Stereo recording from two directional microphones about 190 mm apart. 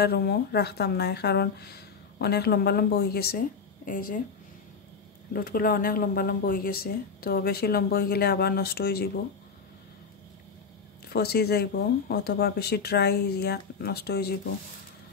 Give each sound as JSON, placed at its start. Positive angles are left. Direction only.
{"t": 0.0, "sound": "speech", "side_deg": 60}
{"t": 5.3, "sound": "speech", "side_deg": 50}
{"t": 11.1, "sound": "speech", "side_deg": 60}